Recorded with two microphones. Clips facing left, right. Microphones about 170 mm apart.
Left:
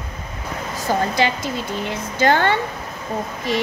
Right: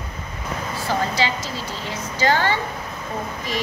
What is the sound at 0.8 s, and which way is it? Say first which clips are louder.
A woman's voice: left 4 dB; 55° left (ahead or behind).